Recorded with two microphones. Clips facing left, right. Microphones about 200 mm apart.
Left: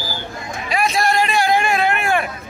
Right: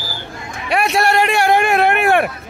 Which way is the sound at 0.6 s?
65° right (ahead or behind).